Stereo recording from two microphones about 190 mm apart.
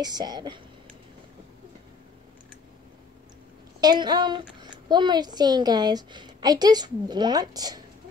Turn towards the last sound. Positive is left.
turn(degrees=-20)  # may be behind; listen again after turning